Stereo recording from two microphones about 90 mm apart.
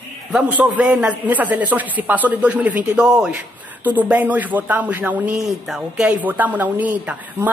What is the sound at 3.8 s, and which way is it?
Speech, 20° right (ahead or behind).